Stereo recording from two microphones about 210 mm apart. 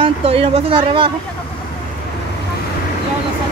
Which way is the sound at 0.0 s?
25° right (ahead or behind).